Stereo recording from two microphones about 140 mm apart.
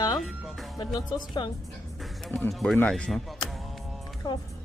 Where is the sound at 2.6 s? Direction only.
5° left (ahead or behind).